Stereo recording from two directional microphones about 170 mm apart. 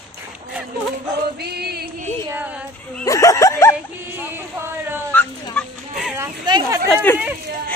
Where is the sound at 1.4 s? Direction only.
70° right (ahead or behind).